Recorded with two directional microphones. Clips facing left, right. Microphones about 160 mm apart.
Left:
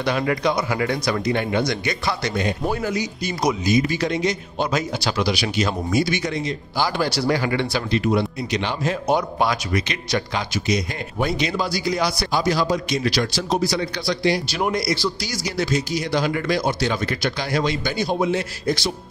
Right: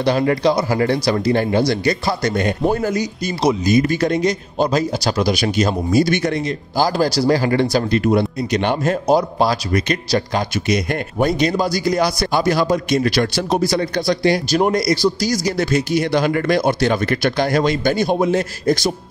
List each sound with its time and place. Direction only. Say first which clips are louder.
0.0 s a man's voice: right 5 dB; 35° right (ahead or behind)
6.0 s speech: right 6 dB; 55° right (ahead or behind)
6.8 s a man's voice: right 5 dB; 40° right (ahead or behind)
9.1 s a man's voice: right 4 dB; 35° right (ahead or behind)